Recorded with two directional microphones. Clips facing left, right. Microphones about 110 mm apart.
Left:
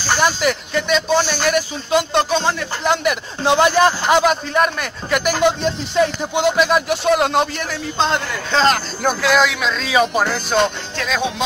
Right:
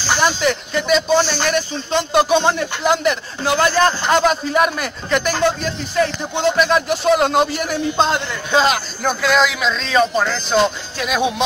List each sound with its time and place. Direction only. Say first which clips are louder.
0.2 s speech: right 1 dB; 5° left (ahead or behind)
1.2 s a man's voice: left 1 dB; 10° left (ahead or behind)
2.1 s speech: right 8 dB; 15° right (ahead or behind)
2.8 s speech: right 1 dB; centre (ahead or behind)
3.4 s a man's voice: left 2 dB; 20° left (ahead or behind); by 4.8 s 5° right (ahead or behind)
5.1 s a man's voice: left 1 dB; 10° left (ahead or behind)
6.9 s speech: right 1 dB; centre (ahead or behind)
11.0 s speech: right 2 dB; 15° right (ahead or behind)